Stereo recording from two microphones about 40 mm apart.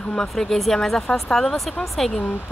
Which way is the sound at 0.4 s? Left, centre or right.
Centre.